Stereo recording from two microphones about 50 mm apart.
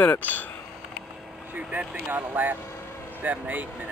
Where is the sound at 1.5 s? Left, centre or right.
Right.